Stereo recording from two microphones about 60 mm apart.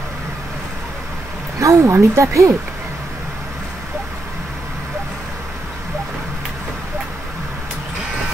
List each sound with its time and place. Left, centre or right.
1.6 s speech: right